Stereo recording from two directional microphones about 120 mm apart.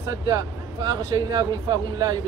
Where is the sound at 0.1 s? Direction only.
30° right (ahead or behind).